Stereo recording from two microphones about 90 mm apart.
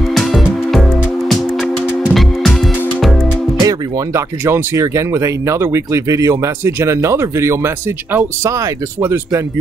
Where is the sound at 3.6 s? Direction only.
45° right (ahead or behind); by 8.5 s 25° right (ahead or behind).